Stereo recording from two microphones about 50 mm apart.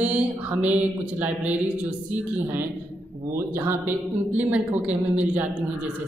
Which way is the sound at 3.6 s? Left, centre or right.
Right.